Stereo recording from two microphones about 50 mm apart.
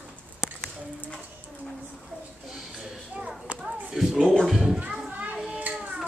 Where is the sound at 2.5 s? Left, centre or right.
Centre.